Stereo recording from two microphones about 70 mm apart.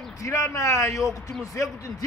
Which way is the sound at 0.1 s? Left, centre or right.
Left.